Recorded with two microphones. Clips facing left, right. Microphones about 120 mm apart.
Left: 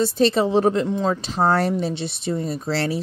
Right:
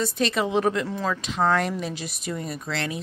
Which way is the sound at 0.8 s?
20° left (ahead or behind).